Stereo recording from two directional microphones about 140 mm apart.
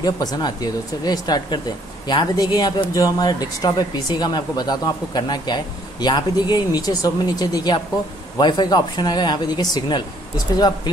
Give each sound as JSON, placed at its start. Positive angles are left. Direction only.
{"t": 0.0, "sound": "speech", "side_deg": 30}